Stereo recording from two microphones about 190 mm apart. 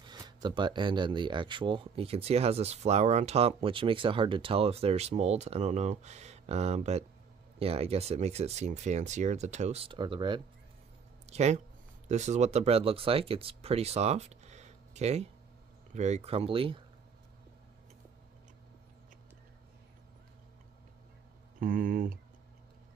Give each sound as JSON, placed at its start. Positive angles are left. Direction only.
{"t": 0.0, "sound": "speech", "side_deg": -20}
{"t": 21.5, "sound": "speech", "side_deg": -45}